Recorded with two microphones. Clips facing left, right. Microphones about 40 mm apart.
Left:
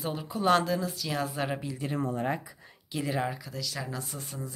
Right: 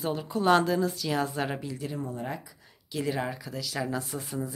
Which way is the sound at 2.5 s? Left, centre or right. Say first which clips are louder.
Left 4 dB; centre.